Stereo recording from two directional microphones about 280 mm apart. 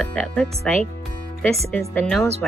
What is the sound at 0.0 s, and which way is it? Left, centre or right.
Speech, centre.